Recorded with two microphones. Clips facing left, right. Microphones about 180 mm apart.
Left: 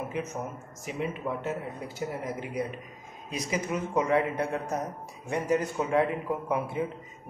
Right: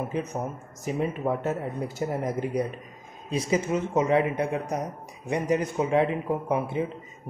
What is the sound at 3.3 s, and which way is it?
Speech, 30° right (ahead or behind).